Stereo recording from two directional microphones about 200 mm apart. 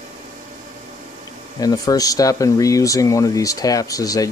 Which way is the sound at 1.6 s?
20° left (ahead or behind).